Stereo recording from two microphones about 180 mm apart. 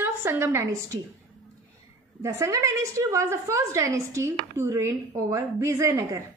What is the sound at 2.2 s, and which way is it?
A woman's voice, 15° right (ahead or behind).